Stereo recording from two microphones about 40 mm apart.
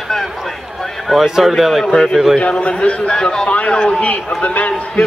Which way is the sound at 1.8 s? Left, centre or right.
Centre.